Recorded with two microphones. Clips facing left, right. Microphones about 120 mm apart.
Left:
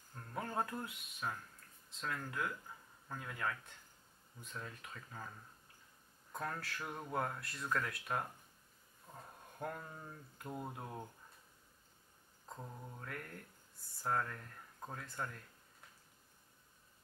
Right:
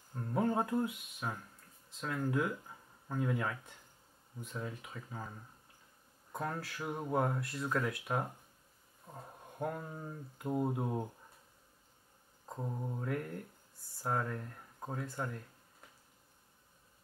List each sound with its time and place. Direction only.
0.1 s speech: 10° right (ahead or behind)
12.4 s mantra: 20° right (ahead or behind)
13.0 s speech: 5° right (ahead or behind)